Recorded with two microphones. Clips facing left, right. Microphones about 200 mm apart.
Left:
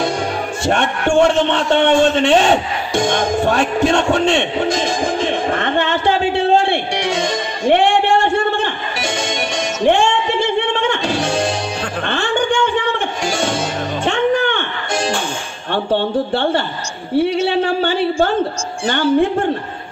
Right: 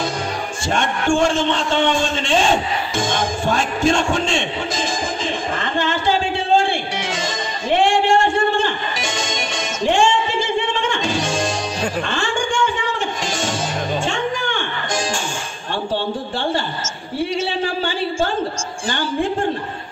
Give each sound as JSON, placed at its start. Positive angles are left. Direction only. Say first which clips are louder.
{"t": 0.7, "sound": "a man's voice", "louder": "left 2 dB", "side_deg": 60}
{"t": 9.8, "sound": "music", "louder": "left 2 dB", "side_deg": 60}
{"t": 12.1, "sound": "a sound", "louder": "left 4 dB", "side_deg": 60}
{"t": 14.0, "sound": "music", "louder": "left 7 dB", "side_deg": 60}
{"t": 15.7, "sound": "a man's voice", "louder": "left 6 dB", "side_deg": 60}